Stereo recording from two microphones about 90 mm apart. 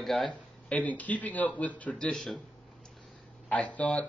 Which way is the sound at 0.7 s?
15° left (ahead or behind).